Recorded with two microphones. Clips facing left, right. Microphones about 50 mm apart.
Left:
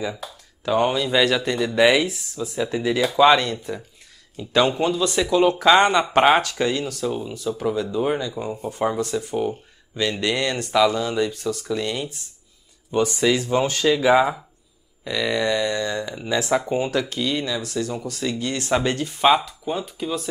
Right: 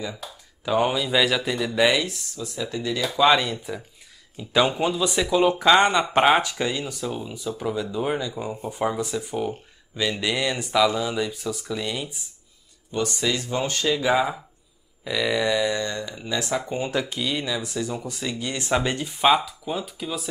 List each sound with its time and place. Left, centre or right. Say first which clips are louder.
0.7 s speech: left 2 dB; centre
2.3 s speech: left 5 dB; left
3.3 s speech: left 2 dB; centre
12.9 s speech: left 6 dB; centre
15.0 s speech: left 1 dB; centre
15.9 s speech: left 4 dB; centre
16.9 s speech: left 3 dB; centre